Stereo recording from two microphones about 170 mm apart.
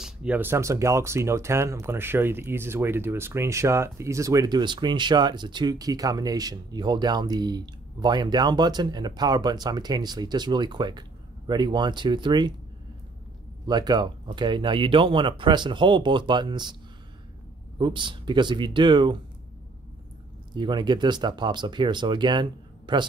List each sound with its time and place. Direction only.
0.0 s speech: 5° right (ahead or behind); by 12.5 s 25° right (ahead or behind)
13.7 s speech: 25° right (ahead or behind)
17.7 s speech: 30° right (ahead or behind)
20.5 s speech: 25° right (ahead or behind)